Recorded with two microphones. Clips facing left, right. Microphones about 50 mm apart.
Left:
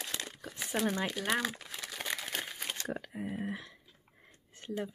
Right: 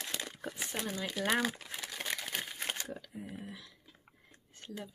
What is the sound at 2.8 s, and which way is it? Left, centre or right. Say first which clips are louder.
Speech: left 6 dB; left.